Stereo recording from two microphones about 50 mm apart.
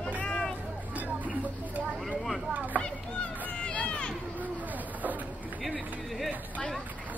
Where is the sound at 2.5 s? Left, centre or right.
Right.